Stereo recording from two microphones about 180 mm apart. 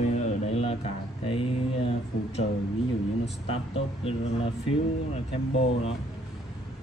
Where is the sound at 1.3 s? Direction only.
30° left (ahead or behind).